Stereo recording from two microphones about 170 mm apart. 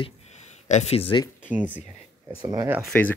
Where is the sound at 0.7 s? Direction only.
40° left (ahead or behind).